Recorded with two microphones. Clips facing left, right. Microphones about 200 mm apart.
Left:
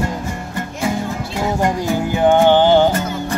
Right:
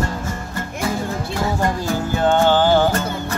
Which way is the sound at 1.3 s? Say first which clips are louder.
Left 3 dB; 15° left (ahead or behind).